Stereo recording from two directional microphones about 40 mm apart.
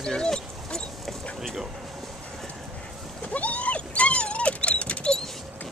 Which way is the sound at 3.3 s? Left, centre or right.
Left.